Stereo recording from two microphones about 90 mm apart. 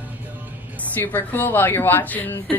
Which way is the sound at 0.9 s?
20° left (ahead or behind).